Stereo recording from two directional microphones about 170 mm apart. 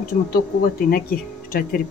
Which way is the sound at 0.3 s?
60° left (ahead or behind).